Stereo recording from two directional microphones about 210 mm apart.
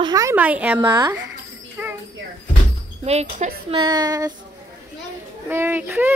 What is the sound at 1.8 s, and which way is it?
Music, 10° right (ahead or behind).